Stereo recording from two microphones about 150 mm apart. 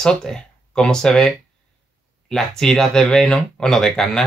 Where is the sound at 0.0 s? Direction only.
5° left (ahead or behind).